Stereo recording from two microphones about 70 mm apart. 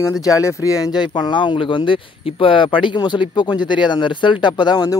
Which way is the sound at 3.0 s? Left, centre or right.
Left.